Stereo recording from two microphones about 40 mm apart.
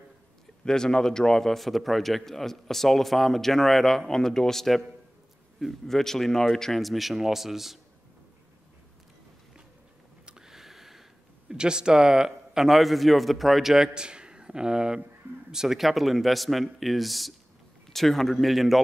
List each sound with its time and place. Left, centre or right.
0.7 s a man's voice: centre
6.8 s a man's voice: centre
10.2 s a sound: right
10.5 s a sound: centre
11.4 s a man's voice: centre
12.6 s a man's voice: centre
13.9 s a man's voice: right; by 18.8 s centre